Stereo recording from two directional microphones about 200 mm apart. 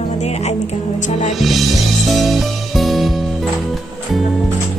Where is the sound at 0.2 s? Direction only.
35° left (ahead or behind).